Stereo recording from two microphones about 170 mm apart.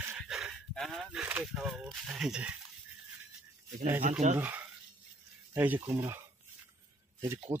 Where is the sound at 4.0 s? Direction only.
45° right (ahead or behind).